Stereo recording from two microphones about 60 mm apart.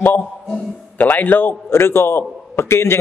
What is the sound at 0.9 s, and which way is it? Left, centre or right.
A man's voice, left.